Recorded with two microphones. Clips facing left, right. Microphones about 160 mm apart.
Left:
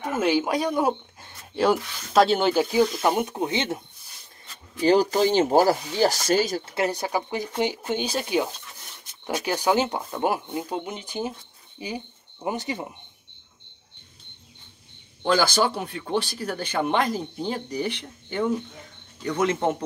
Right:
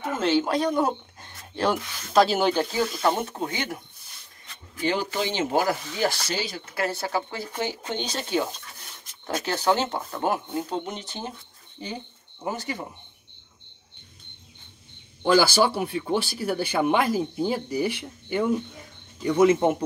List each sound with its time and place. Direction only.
0.0 s speech: 10° left (ahead or behind)
4.8 s speech: 40° left (ahead or behind)
6.6 s speech: 20° left (ahead or behind)
15.2 s speech: 5° right (ahead or behind)